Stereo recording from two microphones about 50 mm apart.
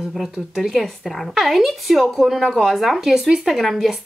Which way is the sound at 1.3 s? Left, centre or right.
Centre.